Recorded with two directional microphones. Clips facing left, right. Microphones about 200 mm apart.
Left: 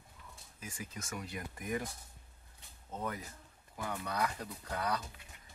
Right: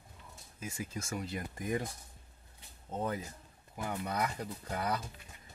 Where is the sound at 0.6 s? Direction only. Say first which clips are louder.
Right 5 dB; 25° right (ahead or behind).